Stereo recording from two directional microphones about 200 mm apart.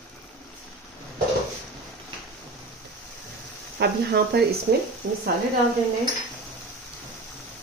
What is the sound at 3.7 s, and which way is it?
Speech, 55° right (ahead or behind).